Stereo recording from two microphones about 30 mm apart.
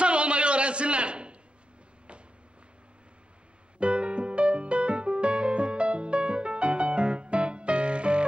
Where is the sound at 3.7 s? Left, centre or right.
Right.